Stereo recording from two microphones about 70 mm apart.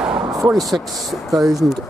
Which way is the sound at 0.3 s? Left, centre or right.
Centre.